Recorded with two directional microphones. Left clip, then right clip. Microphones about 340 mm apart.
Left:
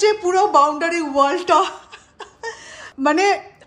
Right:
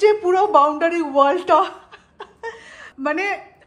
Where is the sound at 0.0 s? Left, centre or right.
Centre.